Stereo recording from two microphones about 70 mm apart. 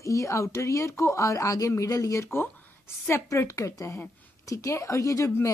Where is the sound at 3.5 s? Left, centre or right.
Left.